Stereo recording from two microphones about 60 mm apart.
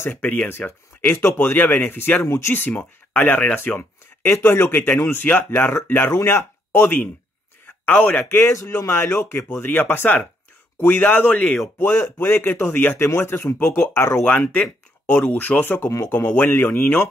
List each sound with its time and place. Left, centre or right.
0.0 s speech: left
2.2 s speech: left
2.5 s speech: left
6.1 s speech: left
7.6 s a sound: left
8.6 s speech: left
11.8 s speech: left
13.0 s speech: left
14.2 s speech: left